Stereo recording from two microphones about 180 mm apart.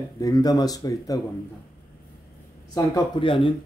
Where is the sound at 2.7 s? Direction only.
25° left (ahead or behind).